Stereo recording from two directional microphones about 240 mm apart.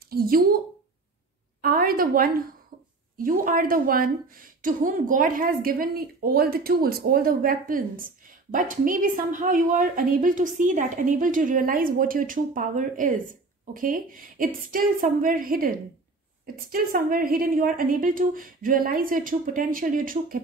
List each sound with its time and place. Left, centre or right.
0.1 s a woman's voice: right
1.6 s a woman's voice: right